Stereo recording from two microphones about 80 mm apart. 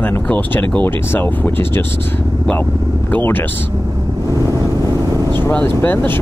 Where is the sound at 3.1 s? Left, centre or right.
Left.